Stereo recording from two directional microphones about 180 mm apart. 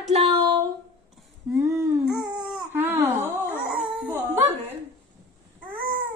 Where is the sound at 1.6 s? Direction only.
15° right (ahead or behind).